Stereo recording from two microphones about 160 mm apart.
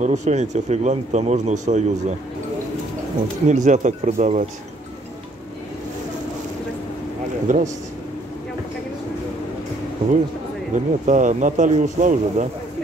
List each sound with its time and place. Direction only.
0.0 s speech: 45° right (ahead or behind)
3.4 s speech: 50° right (ahead or behind)
7.4 s speech: 50° right (ahead or behind)
10.7 s speech: 50° right (ahead or behind)